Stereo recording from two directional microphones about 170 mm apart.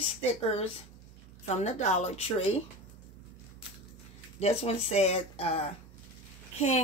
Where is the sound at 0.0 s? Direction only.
35° left (ahead or behind).